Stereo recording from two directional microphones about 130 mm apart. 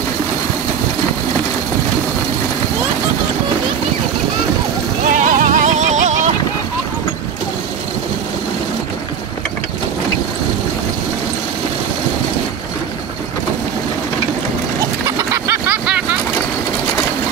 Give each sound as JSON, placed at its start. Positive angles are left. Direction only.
{"t": 5.1, "sound": "music", "side_deg": -85}
{"t": 15.3, "sound": "vehicle", "side_deg": -20}